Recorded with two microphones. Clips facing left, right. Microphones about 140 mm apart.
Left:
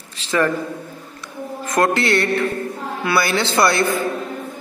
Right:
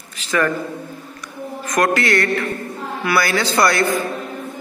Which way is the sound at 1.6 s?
25° left (ahead or behind).